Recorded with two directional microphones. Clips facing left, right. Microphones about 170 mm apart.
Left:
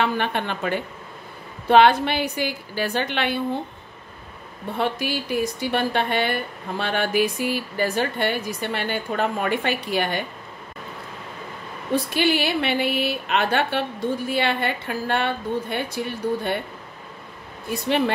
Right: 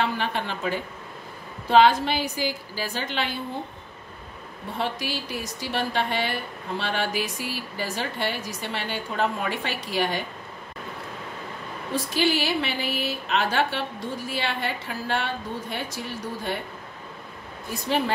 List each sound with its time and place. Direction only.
0.0 s a woman's voice: 60° left (ahead or behind)
4.7 s a woman's voice: 55° left (ahead or behind)
11.9 s a woman's voice: 60° left (ahead or behind)
17.8 s a woman's voice: 65° left (ahead or behind)